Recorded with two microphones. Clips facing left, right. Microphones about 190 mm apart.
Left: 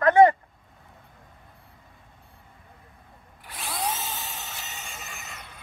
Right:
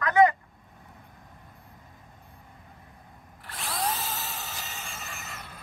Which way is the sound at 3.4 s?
Centre (ahead or behind).